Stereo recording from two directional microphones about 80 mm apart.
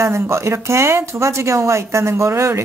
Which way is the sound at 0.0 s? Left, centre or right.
Right.